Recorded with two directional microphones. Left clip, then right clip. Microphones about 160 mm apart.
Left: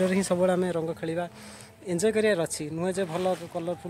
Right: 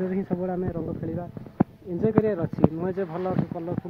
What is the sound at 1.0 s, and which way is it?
Speech, 45° left (ahead or behind).